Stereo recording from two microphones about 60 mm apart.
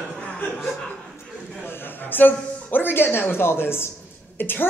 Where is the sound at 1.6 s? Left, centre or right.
Left.